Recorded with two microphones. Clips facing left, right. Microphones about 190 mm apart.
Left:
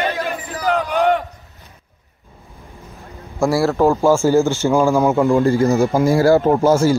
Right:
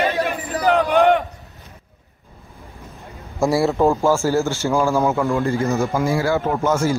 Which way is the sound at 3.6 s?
Centre (ahead or behind).